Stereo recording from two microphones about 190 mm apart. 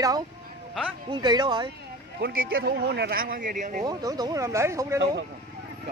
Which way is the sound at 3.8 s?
20° right (ahead or behind).